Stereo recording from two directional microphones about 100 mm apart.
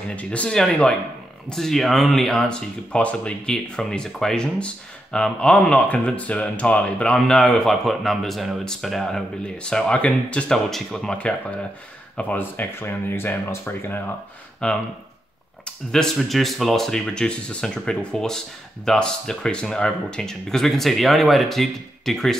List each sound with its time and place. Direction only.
0.1 s speech: 15° left (ahead or behind)
14.6 s speech: 10° left (ahead or behind)